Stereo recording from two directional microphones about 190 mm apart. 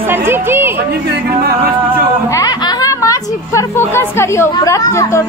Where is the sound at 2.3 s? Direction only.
20° left (ahead or behind).